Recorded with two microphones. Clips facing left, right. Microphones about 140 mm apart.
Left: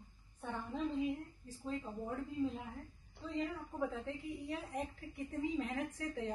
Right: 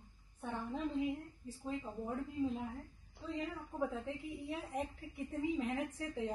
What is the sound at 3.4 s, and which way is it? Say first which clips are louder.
A woman's voice: left 1 dB; centre (ahead or behind).